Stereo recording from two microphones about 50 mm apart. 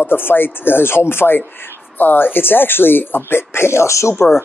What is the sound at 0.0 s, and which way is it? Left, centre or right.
Speech, left.